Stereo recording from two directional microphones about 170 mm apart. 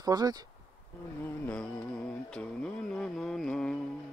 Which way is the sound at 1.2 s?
10° left (ahead or behind).